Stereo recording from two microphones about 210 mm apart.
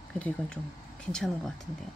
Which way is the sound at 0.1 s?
5° left (ahead or behind).